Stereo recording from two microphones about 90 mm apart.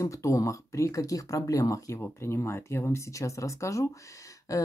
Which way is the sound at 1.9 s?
30° left (ahead or behind).